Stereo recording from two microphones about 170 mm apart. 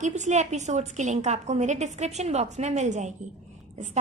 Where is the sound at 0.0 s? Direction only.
45° right (ahead or behind).